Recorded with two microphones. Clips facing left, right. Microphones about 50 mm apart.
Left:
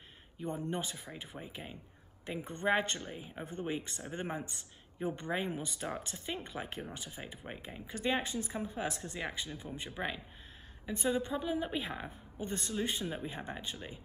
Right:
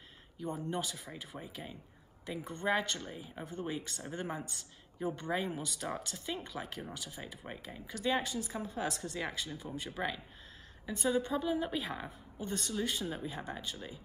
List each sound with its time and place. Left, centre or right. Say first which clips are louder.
0.4 s speech: even; left; by 12.1 s centre
12.4 s speech: even; left